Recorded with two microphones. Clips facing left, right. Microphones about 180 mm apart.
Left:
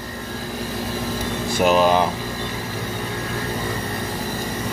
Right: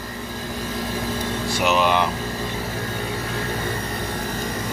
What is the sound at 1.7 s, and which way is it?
Speech, 35° left (ahead or behind).